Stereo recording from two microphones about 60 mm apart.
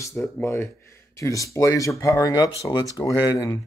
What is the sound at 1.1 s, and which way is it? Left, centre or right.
Speech, left.